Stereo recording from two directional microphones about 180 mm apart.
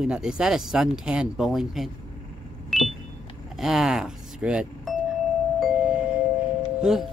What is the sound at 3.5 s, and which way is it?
Speech, centre (ahead or behind).